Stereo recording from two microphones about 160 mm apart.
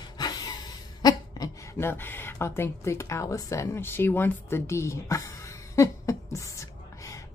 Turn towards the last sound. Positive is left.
turn(degrees=20)  # may be behind; listen again after turning